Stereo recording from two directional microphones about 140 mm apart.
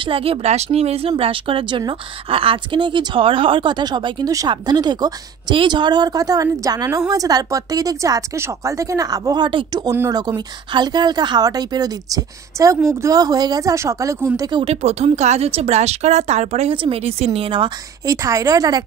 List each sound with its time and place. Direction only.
0.0 s speech: 40° right (ahead or behind); by 14.6 s 25° right (ahead or behind)
14.6 s speech: 50° right (ahead or behind)
18.0 s speech: 25° right (ahead or behind)